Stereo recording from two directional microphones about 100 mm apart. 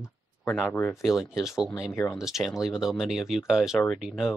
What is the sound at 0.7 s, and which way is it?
Speech, 25° left (ahead or behind).